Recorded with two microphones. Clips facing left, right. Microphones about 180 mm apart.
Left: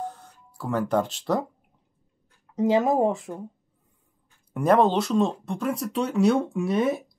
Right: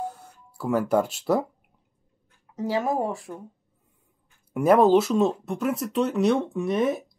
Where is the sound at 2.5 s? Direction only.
20° left (ahead or behind).